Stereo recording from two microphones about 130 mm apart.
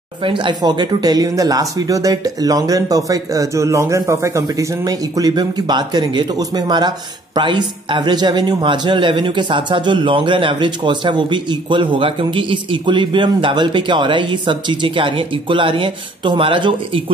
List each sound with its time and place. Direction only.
0.2 s a man's voice: 40° right (ahead or behind)